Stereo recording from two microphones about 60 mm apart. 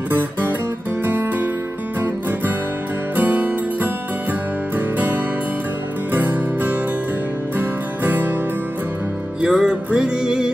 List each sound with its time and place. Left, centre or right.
0.1 s music: right
3.2 s music: right
9.4 s music: centre